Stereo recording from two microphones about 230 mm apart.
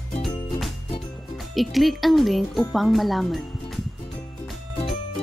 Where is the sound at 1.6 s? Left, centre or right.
Centre.